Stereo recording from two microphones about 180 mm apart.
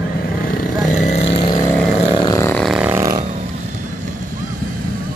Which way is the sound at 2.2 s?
20° left (ahead or behind).